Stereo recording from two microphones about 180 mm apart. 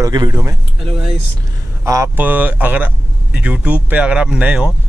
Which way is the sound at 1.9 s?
15° right (ahead or behind).